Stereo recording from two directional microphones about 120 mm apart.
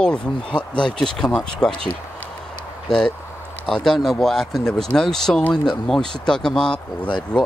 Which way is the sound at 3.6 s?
5° left (ahead or behind).